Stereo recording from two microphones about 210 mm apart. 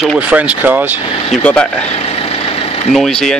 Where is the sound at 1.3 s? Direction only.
5° left (ahead or behind).